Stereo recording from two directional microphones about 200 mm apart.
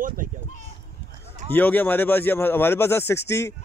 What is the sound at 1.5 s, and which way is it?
Speech, 10° left (ahead or behind).